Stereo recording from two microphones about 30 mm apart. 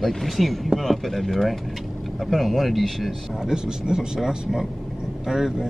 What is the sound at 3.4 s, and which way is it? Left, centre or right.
Speech, right.